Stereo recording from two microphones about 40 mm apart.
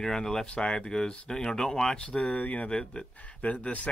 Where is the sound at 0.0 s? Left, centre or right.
Centre.